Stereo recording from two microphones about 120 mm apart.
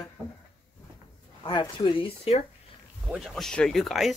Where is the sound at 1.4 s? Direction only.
40° left (ahead or behind).